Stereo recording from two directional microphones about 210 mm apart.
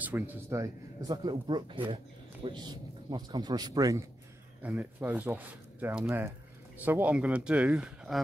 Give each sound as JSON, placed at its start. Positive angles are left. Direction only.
{"t": 0.0, "sound": "speech", "side_deg": -10}